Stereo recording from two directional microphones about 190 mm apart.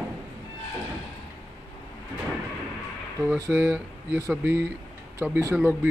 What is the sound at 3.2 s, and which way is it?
Speech, 15° right (ahead or behind).